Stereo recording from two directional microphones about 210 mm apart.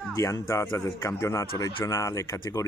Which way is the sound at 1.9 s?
15° left (ahead or behind).